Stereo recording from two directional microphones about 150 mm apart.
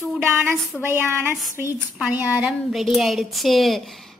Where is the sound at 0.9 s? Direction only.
15° right (ahead or behind).